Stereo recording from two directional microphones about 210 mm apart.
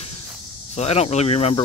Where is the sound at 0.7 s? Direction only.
30° left (ahead or behind).